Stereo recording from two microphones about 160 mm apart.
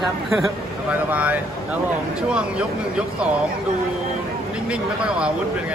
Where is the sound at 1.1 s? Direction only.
10° right (ahead or behind).